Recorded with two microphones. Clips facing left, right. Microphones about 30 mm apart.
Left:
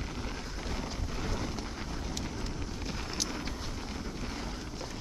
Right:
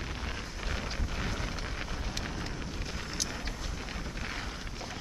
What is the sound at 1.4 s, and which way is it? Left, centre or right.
Vehicle, right.